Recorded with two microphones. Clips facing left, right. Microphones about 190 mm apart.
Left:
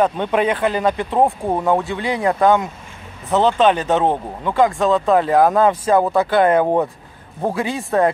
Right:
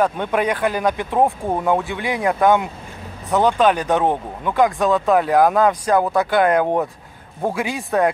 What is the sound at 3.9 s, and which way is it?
Speech, 20° left (ahead or behind).